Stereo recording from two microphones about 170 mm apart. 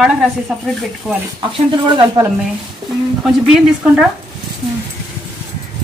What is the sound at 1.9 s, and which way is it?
Speech, 25° right (ahead or behind).